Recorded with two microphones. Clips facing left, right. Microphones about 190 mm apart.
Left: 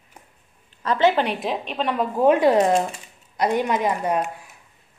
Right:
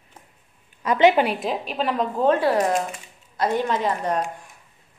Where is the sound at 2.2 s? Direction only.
15° left (ahead or behind).